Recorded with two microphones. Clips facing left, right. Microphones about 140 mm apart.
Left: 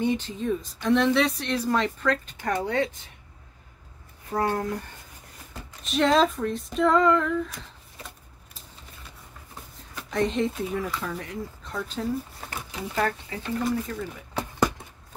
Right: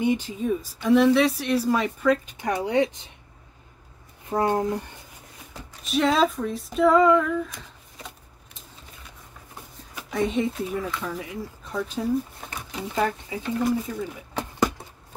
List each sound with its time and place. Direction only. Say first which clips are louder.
0.0 s speech: right 2 dB; 10° right (ahead or behind)
4.3 s speech: right 3 dB; 20° right (ahead or behind)
5.9 s speech: even; centre (ahead or behind)
9.9 s speech: right 1 dB; 5° right (ahead or behind)